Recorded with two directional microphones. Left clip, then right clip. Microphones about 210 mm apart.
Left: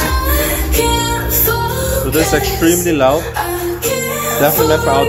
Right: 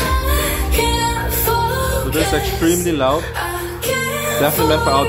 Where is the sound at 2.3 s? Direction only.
Centre (ahead or behind).